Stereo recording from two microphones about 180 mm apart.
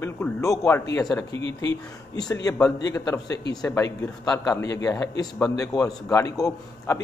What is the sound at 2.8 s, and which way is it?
A man's voice, 20° left (ahead or behind).